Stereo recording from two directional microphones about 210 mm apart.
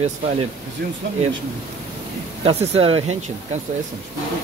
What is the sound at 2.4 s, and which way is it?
Speech, 25° right (ahead or behind).